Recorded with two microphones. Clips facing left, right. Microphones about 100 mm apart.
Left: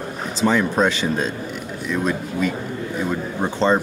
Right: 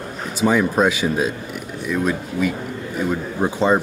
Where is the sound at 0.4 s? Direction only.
10° right (ahead or behind).